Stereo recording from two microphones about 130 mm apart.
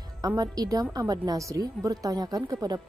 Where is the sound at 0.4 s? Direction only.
30° right (ahead or behind).